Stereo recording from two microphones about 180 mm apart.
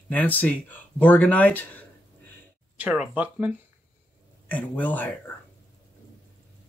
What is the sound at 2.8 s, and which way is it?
Speech, 5° right (ahead or behind).